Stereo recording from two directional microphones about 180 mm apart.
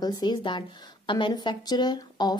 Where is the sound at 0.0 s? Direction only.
25° left (ahead or behind).